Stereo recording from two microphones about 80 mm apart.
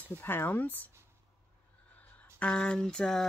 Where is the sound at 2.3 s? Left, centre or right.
Centre.